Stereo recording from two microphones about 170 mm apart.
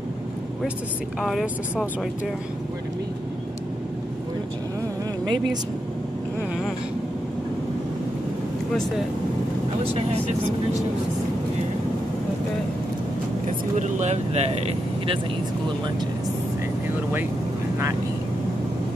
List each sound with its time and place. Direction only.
1.2 s speech: centre (ahead or behind)
5.2 s speech: 25° right (ahead or behind)
13.7 s speech: 45° right (ahead or behind)